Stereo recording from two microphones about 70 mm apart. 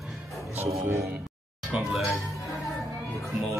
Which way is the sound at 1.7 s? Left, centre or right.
Right.